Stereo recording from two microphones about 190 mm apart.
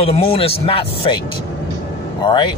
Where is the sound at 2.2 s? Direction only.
25° left (ahead or behind).